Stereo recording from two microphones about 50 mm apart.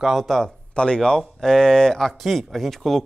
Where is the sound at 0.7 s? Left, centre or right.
Centre.